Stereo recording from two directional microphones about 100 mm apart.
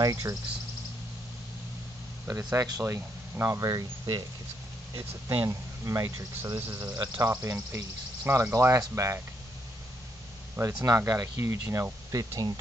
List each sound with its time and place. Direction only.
0.0 s speech: 35° right (ahead or behind)
2.2 s speech: 30° right (ahead or behind)
5.3 s speech: 25° right (ahead or behind)
10.6 s speech: 35° right (ahead or behind)